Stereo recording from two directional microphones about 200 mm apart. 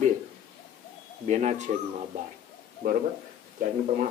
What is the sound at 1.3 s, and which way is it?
Speech, 35° right (ahead or behind).